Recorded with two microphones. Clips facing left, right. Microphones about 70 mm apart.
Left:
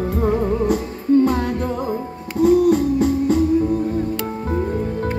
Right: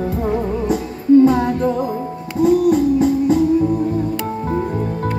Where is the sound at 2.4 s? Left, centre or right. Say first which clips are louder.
Right 1 dB; centre.